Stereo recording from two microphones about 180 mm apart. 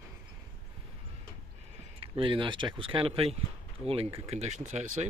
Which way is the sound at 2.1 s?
30° right (ahead or behind).